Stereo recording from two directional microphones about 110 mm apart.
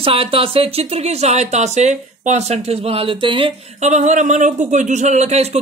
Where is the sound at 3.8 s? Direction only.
90° right.